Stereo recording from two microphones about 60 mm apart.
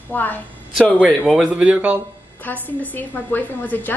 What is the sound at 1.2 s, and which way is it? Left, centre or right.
Speech, centre.